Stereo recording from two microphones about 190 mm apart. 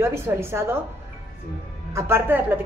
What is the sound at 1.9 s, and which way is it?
Speech, 15° right (ahead or behind).